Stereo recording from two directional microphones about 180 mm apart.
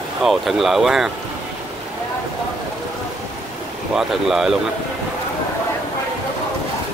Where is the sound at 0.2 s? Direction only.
Centre (ahead or behind).